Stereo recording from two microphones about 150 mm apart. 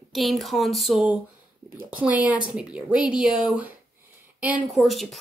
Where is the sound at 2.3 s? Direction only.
5° right (ahead or behind).